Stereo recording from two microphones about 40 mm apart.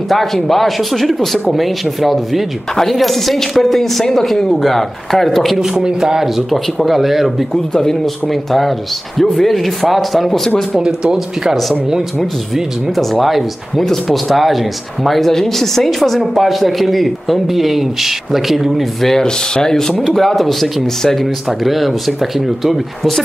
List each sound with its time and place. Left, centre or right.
0.1 s speech: centre
5.6 s speech: centre
7.7 s speech: centre
10.8 s speech: centre
12.9 s speech: centre
19.0 s speech: centre
20.0 s speech: centre
21.5 s speech: centre